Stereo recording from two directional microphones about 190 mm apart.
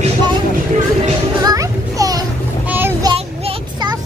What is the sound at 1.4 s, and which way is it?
Children playing, 20° right (ahead or behind).